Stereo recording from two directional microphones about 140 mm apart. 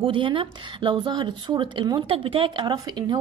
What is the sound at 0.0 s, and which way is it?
A woman's voice, 35° right (ahead or behind).